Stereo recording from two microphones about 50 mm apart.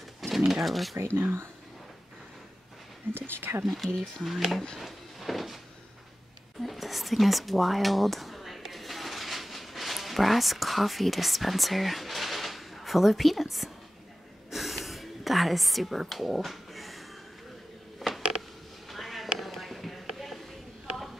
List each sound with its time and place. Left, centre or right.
0.5 s speech: centre
0.9 s speech: right
3.2 s speech: right
3.6 s speech: centre
4.7 s a sound: centre
6.6 s speech: centre
14.5 s a sound: centre